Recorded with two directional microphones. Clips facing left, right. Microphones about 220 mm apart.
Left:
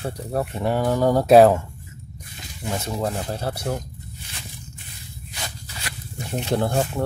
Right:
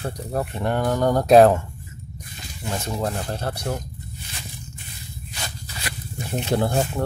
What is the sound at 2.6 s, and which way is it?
Speech, 10° left (ahead or behind).